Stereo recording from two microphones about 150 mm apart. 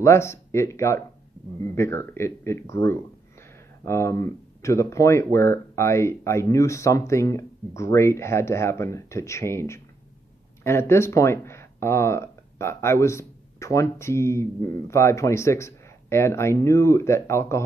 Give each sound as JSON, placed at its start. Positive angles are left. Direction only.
{"t": 0.0, "sound": "speech", "side_deg": 15}